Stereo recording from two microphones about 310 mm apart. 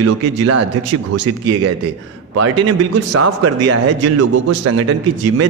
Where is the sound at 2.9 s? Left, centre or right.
Right.